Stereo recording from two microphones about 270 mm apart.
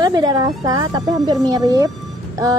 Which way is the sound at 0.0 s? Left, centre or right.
Centre.